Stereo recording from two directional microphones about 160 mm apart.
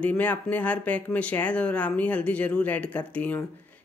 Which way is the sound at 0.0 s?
10° left (ahead or behind).